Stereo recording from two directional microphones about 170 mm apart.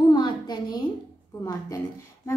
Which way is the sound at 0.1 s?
25° left (ahead or behind).